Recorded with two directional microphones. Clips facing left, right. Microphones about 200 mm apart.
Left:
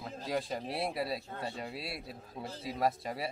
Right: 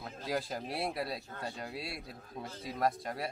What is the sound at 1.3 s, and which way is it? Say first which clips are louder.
Speech: left 2 dB; 25° left (ahead or behind).